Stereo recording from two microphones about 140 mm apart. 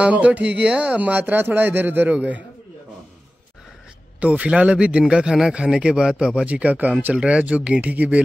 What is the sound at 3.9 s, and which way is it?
A man's voice, 10° right (ahead or behind).